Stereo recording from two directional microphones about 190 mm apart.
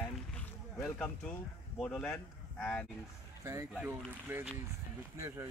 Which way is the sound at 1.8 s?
5° left (ahead or behind).